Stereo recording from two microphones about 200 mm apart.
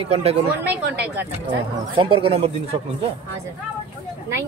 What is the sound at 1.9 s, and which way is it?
Speech, 25° right (ahead or behind).